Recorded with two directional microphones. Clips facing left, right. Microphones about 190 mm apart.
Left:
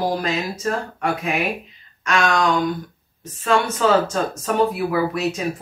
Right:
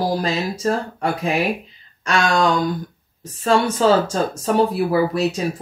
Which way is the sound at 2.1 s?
35° right (ahead or behind).